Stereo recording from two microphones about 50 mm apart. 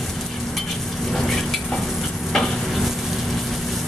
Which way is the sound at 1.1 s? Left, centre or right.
Centre.